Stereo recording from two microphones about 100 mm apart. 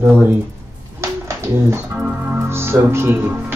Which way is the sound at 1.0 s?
30° right (ahead or behind).